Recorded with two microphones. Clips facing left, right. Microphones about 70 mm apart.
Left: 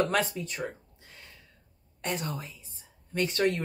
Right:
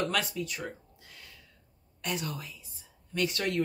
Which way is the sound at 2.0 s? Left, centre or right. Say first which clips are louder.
Left 2 dB; left.